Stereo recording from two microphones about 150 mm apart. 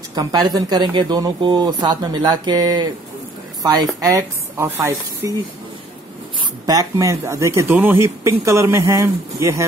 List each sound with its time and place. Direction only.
0.1 s speech: 25° right (ahead or behind)
6.6 s speech: 25° right (ahead or behind)